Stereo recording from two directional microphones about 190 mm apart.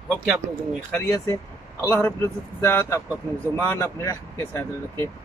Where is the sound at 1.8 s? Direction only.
10° left (ahead or behind).